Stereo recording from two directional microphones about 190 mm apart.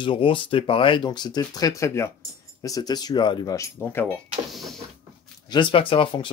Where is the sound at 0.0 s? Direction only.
25° left (ahead or behind); by 4.2 s 10° left (ahead or behind).